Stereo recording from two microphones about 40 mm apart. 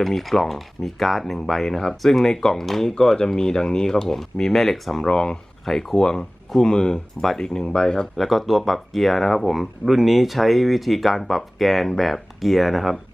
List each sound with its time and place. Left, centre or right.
0.0 s speech: centre
5.0 s speech: centre
8.2 s speech: centre